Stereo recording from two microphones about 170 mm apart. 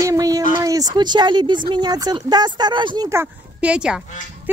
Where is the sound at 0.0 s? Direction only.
20° right (ahead or behind).